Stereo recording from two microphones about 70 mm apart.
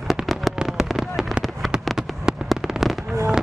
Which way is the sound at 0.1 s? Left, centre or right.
Centre.